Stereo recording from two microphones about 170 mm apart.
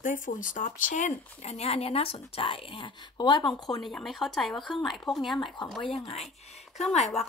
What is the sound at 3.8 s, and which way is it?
Speech, centre (ahead or behind).